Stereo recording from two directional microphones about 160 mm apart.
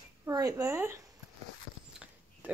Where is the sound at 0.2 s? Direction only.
20° right (ahead or behind).